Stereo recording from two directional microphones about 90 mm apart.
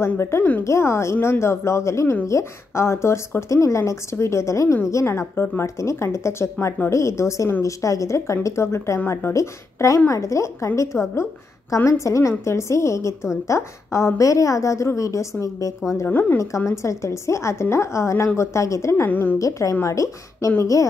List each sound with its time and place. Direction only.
0.0 s a woman's voice: 30° left (ahead or behind)
16.1 s speech: 20° left (ahead or behind)
16.3 s a woman's voice: 35° left (ahead or behind)
19.0 s speech: 20° left (ahead or behind)
19.3 s a woman's voice: 40° left (ahead or behind)